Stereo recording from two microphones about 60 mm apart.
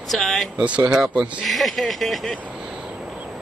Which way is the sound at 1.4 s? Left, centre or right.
Centre.